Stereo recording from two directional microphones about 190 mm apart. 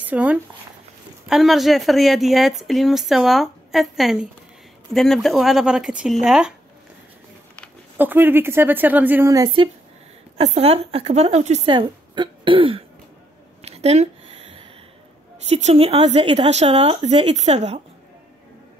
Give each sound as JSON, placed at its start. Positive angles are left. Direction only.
{"t": 0.0, "sound": "a woman's voice", "side_deg": -10}
{"t": 8.0, "sound": "speech", "side_deg": -10}
{"t": 10.3, "sound": "a woman's voice", "side_deg": -35}
{"t": 13.6, "sound": "a sound", "side_deg": -35}
{"t": 15.4, "sound": "a woman's voice", "side_deg": -35}